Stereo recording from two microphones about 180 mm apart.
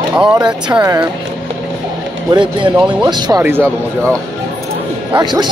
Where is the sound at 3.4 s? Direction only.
10° right (ahead or behind).